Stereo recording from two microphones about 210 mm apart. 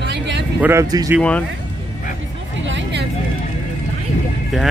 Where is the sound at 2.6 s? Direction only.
60° right (ahead or behind).